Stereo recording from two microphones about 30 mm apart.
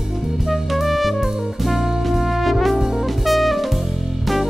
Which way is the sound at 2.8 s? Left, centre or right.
Centre.